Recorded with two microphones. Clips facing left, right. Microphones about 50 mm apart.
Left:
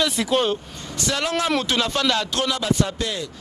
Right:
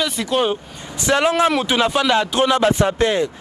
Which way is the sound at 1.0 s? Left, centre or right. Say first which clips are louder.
Right 7 dB; right.